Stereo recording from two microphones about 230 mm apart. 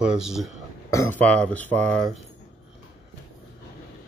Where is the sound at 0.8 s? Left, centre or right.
Centre.